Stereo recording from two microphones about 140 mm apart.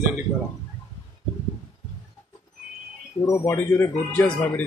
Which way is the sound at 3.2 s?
20° left (ahead or behind).